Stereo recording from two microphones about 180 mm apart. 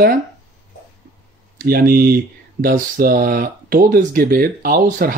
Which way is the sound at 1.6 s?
55° right (ahead or behind).